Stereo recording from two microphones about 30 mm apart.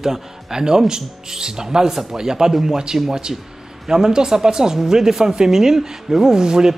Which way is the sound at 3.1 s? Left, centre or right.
Right.